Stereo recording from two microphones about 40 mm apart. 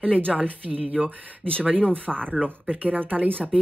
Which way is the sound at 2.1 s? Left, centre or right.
Centre.